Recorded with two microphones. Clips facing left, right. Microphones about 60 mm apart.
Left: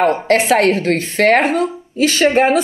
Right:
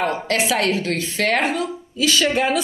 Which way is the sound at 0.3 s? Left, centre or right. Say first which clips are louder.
Left 7 dB; left.